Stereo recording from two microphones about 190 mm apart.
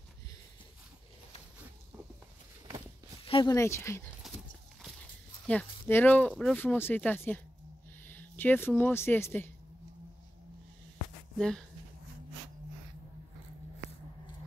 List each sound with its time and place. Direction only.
3.3 s speech: 30° left (ahead or behind)
3.5 s speech: 15° left (ahead or behind)
4.2 s clip-clop: centre (ahead or behind)
5.5 s speech: 10° left (ahead or behind)
11.3 s speech: 5° left (ahead or behind)